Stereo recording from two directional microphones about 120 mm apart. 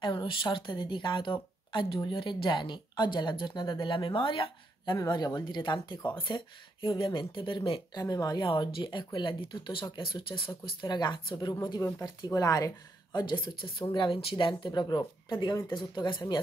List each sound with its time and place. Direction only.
0.0 s speech: 40° left (ahead or behind)
4.9 s speech: 30° left (ahead or behind)
7.9 s speech: 30° left (ahead or behind)
8.5 s speech: 45° left (ahead or behind)